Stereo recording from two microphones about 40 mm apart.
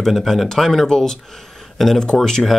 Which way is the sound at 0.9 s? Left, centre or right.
Centre.